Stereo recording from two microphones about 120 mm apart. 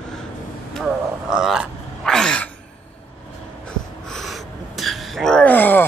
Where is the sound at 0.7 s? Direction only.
5° right (ahead or behind).